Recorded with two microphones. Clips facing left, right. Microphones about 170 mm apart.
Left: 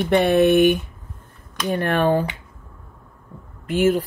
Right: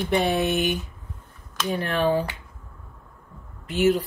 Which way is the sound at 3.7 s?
50° left (ahead or behind).